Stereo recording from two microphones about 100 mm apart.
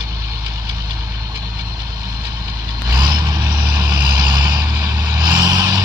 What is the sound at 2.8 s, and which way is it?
Vehicle, 40° right (ahead or behind).